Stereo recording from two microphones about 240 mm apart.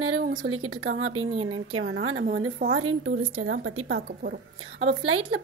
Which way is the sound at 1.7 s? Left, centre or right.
Right.